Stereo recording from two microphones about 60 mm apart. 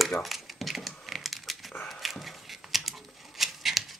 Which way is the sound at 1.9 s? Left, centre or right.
Centre.